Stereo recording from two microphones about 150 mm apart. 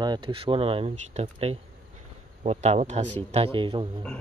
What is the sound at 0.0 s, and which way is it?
Speech, 30° right (ahead or behind).